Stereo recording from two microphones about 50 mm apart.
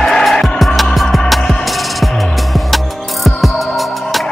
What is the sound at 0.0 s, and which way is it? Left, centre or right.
Music, centre.